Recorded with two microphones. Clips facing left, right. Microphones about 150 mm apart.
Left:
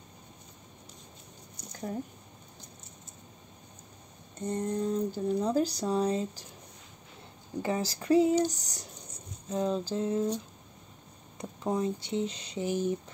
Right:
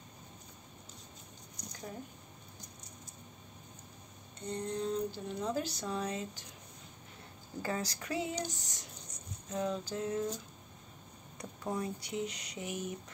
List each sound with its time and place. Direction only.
4.5 s speech: 45° left (ahead or behind)
7.6 s speech: 25° left (ahead or behind)